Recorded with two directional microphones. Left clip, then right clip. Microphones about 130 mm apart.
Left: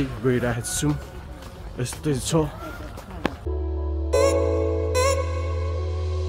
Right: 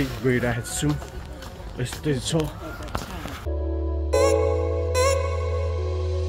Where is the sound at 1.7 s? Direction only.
45° left (ahead or behind).